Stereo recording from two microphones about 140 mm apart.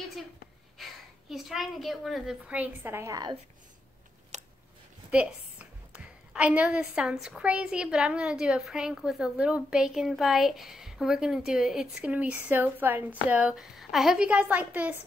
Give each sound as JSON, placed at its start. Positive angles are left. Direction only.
{"t": 1.3, "sound": "a woman's voice", "side_deg": 0}
{"t": 4.3, "sound": "a sound", "side_deg": -55}
{"t": 5.1, "sound": "a woman's voice", "side_deg": -10}